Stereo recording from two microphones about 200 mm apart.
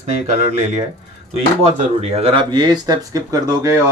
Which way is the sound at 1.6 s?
30° right (ahead or behind).